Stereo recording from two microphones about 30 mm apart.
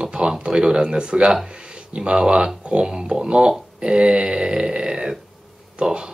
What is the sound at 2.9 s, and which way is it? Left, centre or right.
Speech, right.